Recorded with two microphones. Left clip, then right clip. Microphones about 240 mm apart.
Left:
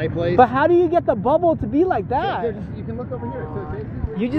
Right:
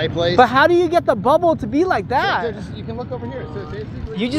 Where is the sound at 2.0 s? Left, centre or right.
Right.